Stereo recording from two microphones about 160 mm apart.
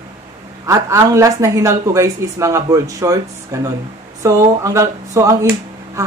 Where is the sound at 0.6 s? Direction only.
20° right (ahead or behind).